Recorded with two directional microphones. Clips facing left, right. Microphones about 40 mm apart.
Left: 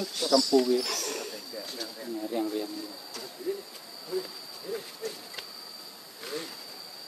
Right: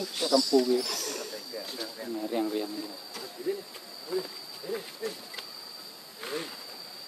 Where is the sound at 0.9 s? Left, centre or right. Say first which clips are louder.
Left 1 dB; centre.